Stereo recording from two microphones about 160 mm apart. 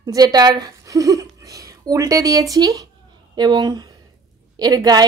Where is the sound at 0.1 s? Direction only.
25° right (ahead or behind).